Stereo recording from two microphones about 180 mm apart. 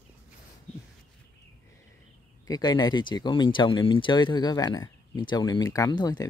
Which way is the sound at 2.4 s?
20° left (ahead or behind).